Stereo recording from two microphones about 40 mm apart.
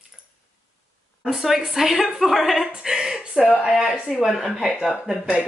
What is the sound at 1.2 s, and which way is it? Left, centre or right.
A woman's voice, centre.